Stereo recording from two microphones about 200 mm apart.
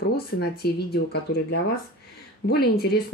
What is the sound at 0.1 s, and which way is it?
Speech, 50° left (ahead or behind).